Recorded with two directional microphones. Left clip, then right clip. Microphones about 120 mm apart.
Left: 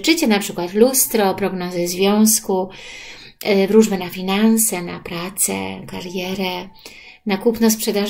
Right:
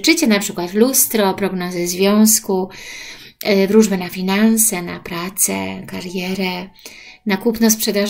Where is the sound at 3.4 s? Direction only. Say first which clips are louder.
Right 1 dB; 35° right (ahead or behind).